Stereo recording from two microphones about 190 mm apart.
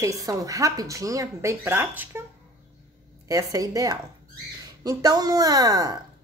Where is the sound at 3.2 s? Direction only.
20° right (ahead or behind).